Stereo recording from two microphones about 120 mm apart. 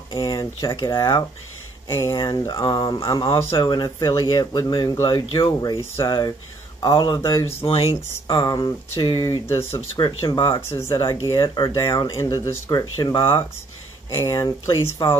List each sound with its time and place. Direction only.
0.3 s a sound: 30° left (ahead or behind)
0.7 s speech: 35° left (ahead or behind)
1.9 s speech: 25° left (ahead or behind)
4.9 s speech: 25° left (ahead or behind)
7.6 s speech: 55° left (ahead or behind)
7.9 s speech: 35° left (ahead or behind)
9.6 s speech: 55° left (ahead or behind)
10.0 s speech: 35° left (ahead or behind)
10.4 s speech: 25° left (ahead or behind)
11.3 s speech: 40° left (ahead or behind)